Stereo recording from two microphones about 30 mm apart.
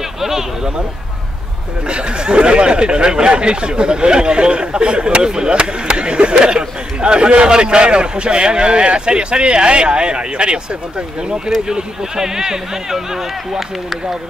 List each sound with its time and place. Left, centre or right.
0.2 s a sound: centre
1.9 s speech: right
11.6 s speech: right